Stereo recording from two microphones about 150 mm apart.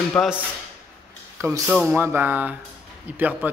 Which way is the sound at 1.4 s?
20° right (ahead or behind).